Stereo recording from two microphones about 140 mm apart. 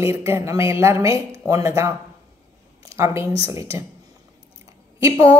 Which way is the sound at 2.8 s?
20° right (ahead or behind).